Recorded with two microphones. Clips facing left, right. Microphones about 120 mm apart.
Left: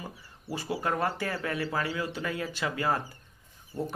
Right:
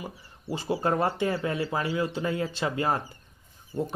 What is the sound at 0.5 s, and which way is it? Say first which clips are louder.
Speech: right 4 dB; 25° right (ahead or behind).